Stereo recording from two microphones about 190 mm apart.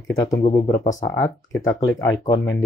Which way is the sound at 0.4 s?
25° left (ahead or behind).